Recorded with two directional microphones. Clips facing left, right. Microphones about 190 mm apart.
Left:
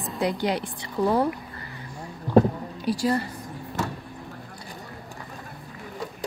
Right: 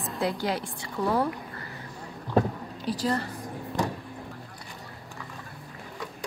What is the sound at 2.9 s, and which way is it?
Speech, 10° left (ahead or behind).